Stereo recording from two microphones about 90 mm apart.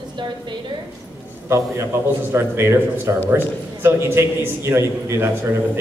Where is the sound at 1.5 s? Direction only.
30° right (ahead or behind).